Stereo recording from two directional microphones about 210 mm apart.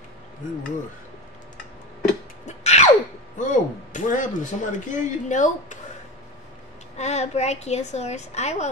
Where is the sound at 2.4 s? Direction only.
30° left (ahead or behind).